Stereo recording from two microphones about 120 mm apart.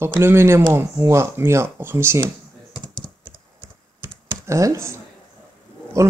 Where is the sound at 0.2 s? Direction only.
20° right (ahead or behind).